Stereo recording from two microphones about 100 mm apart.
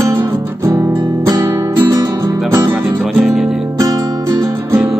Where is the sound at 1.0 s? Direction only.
40° right (ahead or behind).